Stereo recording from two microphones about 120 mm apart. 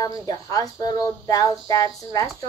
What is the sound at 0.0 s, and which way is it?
Speech, 30° left (ahead or behind).